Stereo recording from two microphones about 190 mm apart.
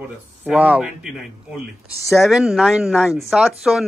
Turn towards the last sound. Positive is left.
turn(degrees=0)  # may be behind; listen again after turning